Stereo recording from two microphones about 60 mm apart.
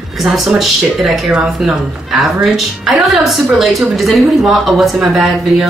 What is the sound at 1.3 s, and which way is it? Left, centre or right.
Speech, centre.